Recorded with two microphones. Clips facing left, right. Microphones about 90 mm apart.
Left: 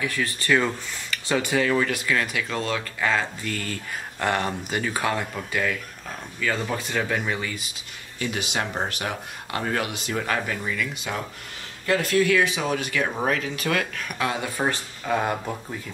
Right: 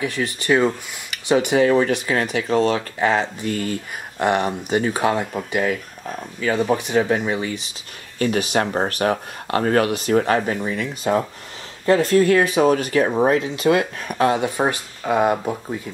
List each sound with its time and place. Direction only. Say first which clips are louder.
0.0 s speech: right 3 dB; 20° right (ahead or behind)
8.2 s speech: right 8 dB; 45° right (ahead or behind); by 14.0 s 25° right (ahead or behind)
14.0 s speech: right 8 dB; 35° right (ahead or behind)
14.6 s speech: right 5 dB; 15° right (ahead or behind)